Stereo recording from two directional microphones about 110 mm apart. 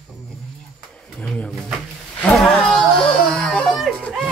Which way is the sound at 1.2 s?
5° left (ahead or behind).